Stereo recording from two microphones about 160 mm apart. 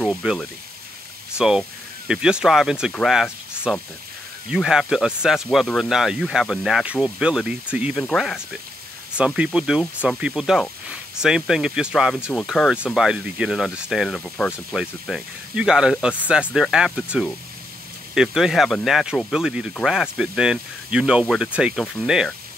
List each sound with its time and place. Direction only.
0.0 s speech: centre (ahead or behind)
8.0 s speech: 5° left (ahead or behind)